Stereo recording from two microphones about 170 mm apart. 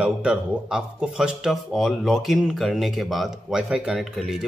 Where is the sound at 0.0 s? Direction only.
5° right (ahead or behind).